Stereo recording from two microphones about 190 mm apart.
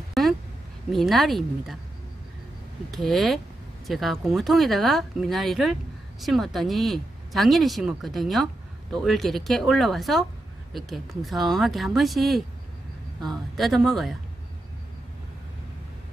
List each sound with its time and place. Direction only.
0.1 s a sound: centre (ahead or behind)
0.9 s speech: centre (ahead or behind)
2.9 s speech: centre (ahead or behind)